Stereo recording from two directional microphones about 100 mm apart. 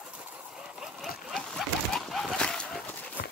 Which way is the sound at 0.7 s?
5° left (ahead or behind).